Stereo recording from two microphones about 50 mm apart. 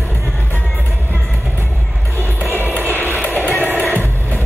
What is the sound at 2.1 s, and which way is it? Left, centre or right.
Music, right.